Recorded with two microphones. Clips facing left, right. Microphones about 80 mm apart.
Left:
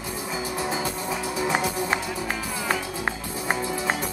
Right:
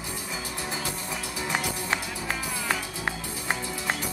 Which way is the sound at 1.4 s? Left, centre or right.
Centre.